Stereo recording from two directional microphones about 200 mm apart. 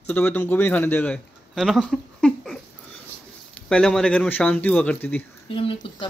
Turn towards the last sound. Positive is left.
turn(degrees=25)  # may be behind; listen again after turning